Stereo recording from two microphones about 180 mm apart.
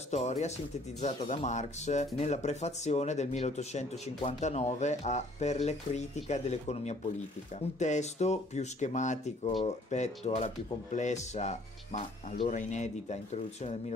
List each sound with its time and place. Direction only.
0.1 s speech: 40° left (ahead or behind)